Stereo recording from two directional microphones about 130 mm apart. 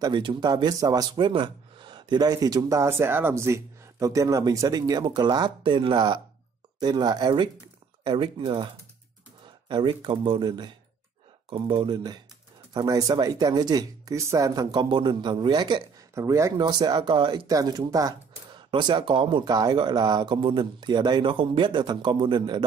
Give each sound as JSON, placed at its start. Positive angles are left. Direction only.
{"t": 0.0, "sound": "a man's voice", "side_deg": -40}
{"t": 16.2, "sound": "a man's voice", "side_deg": -20}